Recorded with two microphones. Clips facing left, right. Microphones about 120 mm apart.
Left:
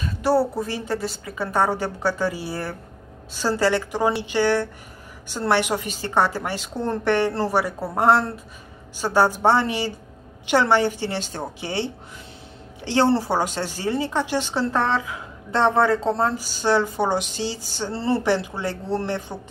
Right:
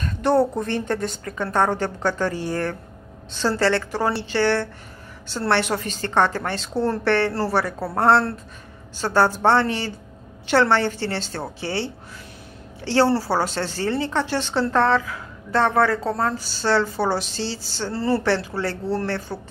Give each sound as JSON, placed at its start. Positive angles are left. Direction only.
{"t": 0.0, "sound": "a woman's voice", "side_deg": 5}